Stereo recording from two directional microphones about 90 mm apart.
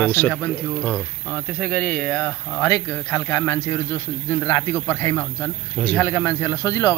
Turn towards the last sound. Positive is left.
turn(degrees=35)  # may be behind; listen again after turning